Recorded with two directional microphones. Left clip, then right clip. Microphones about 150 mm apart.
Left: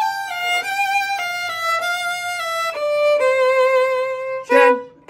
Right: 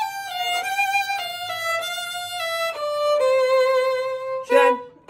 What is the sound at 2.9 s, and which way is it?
Violin, 20° left (ahead or behind).